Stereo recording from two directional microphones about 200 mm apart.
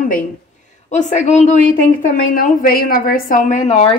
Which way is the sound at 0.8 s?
35° left (ahead or behind).